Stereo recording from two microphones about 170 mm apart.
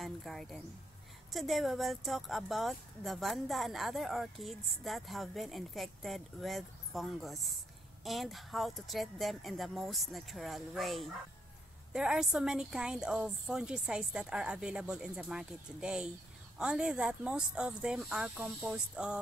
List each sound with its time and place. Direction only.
0.0 s speech: centre (ahead or behind)